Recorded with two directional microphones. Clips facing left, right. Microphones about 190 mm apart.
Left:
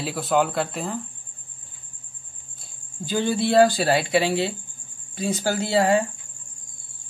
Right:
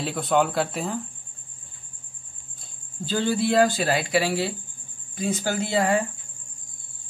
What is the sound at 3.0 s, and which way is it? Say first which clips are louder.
Speech: left 1 dB; 15° left (ahead or behind).